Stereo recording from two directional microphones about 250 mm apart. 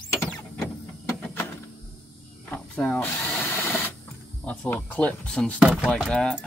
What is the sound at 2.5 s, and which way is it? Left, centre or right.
Drill, centre.